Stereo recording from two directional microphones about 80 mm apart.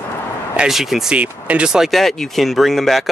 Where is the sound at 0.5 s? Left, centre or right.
Centre.